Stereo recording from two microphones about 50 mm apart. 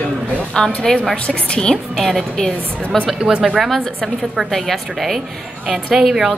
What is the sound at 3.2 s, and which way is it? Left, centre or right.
Speech, centre.